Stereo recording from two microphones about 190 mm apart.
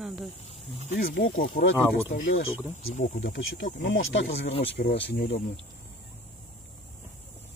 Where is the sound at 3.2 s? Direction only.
70° left (ahead or behind).